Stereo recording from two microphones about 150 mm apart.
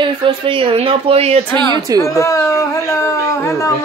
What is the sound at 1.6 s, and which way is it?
Speech, 30° right (ahead or behind).